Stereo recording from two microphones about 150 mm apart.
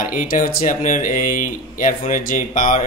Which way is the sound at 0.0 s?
60° left (ahead or behind).